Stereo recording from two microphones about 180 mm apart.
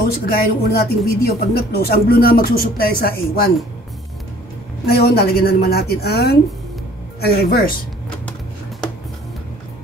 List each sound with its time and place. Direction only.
0.3 s speech: 60° left (ahead or behind)
4.8 s speech: 60° left (ahead or behind)